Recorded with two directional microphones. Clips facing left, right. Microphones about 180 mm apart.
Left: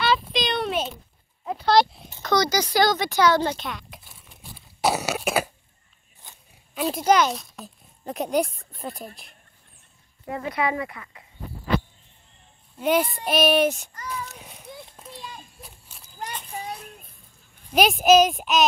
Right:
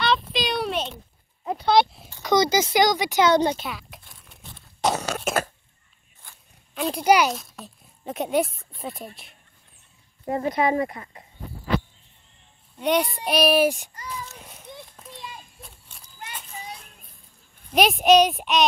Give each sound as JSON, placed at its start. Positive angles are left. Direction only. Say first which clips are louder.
{"t": 0.0, "sound": "a sound", "louder": "even", "side_deg": 0}
{"t": 2.2, "sound": "speech", "louder": "right 2 dB", "side_deg": -20}
{"t": 3.5, "sound": "crunch", "louder": "even", "side_deg": 0}
{"t": 6.2, "sound": "a sound", "louder": "left 1 dB", "side_deg": 20}
{"t": 6.7, "sound": "a child's voice", "louder": "left 1 dB", "side_deg": 0}
{"t": 7.1, "sound": "speech", "louder": "right 1 dB", "side_deg": -10}
{"t": 8.7, "sound": "child singing", "louder": "even", "side_deg": 0}
{"t": 10.2, "sound": "speech", "louder": "right 4 dB", "side_deg": -40}
{"t": 12.7, "sound": "child singing", "louder": "left 1 dB", "side_deg": 0}
{"t": 13.7, "sound": "speech", "louder": "right 1 dB", "side_deg": -15}
{"t": 14.3, "sound": "children playing", "louder": "left 1 dB", "side_deg": 0}
{"t": 17.7, "sound": "child singing", "louder": "even", "side_deg": 0}